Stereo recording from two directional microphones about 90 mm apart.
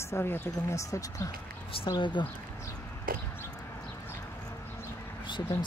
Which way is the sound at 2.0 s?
60° left (ahead or behind).